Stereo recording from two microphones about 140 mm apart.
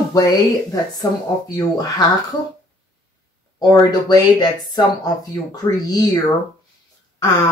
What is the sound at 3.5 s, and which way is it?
Speech, 25° left (ahead or behind).